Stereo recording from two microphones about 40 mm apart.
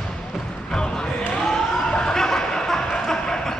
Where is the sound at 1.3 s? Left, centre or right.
Centre.